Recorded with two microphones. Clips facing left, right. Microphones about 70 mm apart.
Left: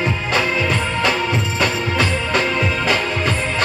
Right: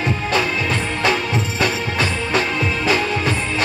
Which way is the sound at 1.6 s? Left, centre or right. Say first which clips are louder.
Left 1 dB; left.